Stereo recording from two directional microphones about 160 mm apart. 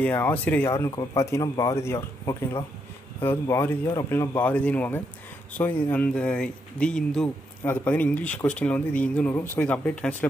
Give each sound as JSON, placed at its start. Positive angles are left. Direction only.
{"t": 0.0, "sound": "speech", "side_deg": 10}